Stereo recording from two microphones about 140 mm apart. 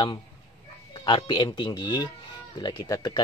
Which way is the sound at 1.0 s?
35° left (ahead or behind).